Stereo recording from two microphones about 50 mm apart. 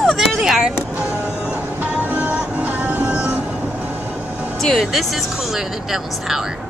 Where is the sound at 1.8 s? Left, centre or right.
Right.